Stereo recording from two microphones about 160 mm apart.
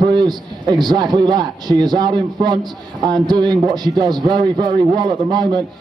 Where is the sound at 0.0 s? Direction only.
30° right (ahead or behind).